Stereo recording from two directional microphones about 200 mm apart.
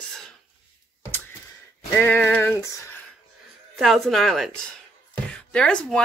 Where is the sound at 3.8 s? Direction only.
Centre (ahead or behind).